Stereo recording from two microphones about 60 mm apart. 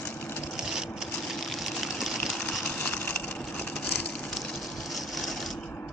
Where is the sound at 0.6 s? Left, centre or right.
Centre.